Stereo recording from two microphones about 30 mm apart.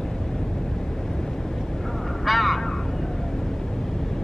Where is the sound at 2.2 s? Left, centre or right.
Centre.